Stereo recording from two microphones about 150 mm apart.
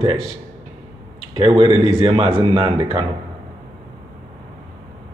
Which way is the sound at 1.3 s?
40° right (ahead or behind).